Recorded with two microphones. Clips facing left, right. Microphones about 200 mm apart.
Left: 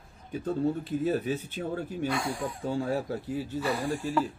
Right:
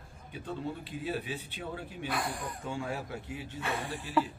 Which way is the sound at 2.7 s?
35° left (ahead or behind).